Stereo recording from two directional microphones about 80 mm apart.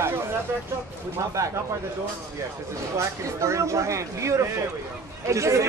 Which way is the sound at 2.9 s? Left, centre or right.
Right.